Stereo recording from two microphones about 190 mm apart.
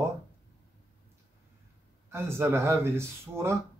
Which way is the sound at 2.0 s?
15° right (ahead or behind).